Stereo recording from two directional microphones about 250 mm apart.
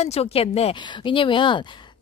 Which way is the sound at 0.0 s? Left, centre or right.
Left.